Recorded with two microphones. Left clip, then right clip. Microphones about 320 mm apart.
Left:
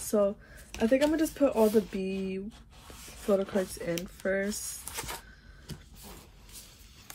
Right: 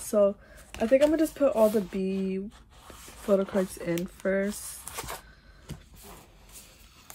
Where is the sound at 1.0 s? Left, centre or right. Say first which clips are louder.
Right 3 dB; right.